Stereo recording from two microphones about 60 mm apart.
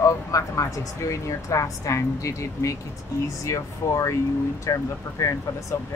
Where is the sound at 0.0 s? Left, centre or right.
Left.